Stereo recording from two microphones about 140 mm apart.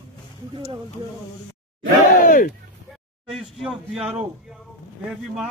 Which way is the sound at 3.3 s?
Centre (ahead or behind).